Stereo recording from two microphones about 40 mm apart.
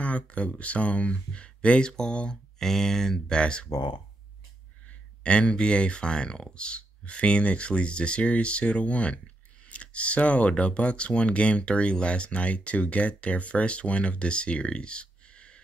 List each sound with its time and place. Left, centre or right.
0.0 s speech: left
2.6 s speech: centre
3.3 s speech: left
4.8 s speech: left